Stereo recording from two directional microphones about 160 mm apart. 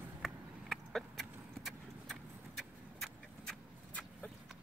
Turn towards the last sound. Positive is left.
turn(degrees=5)  # may be behind; listen again after turning